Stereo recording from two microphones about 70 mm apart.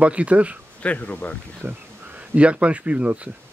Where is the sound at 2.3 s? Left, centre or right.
Centre.